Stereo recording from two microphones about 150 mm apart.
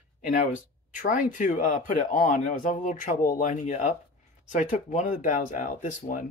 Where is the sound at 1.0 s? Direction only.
60° left (ahead or behind).